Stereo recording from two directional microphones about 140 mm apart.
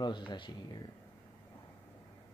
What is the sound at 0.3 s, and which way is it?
Speech, 30° left (ahead or behind).